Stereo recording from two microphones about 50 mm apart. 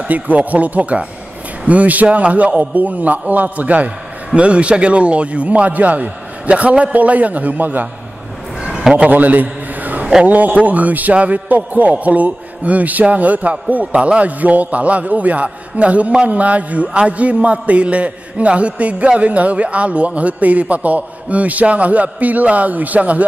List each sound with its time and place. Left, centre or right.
0.1 s a man's voice: right
8.9 s a sound: right
10.2 s a man's voice: right